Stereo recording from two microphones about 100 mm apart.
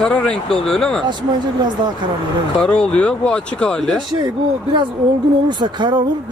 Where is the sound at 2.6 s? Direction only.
10° left (ahead or behind).